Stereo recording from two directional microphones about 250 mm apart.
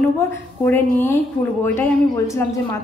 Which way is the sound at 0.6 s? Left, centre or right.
Centre.